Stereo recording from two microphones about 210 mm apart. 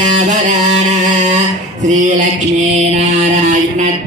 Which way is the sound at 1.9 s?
35° right (ahead or behind).